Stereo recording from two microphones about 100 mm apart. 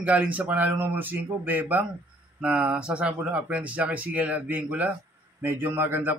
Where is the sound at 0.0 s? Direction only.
15° right (ahead or behind).